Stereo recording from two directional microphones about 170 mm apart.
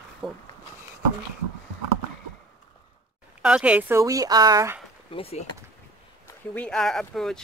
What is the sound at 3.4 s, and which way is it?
A woman's voice, 5° right (ahead or behind).